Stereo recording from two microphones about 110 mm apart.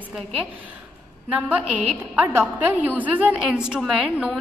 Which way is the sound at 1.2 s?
10° right (ahead or behind).